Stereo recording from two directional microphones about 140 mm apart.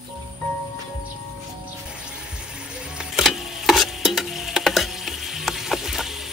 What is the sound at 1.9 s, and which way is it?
Music, 5° right (ahead or behind).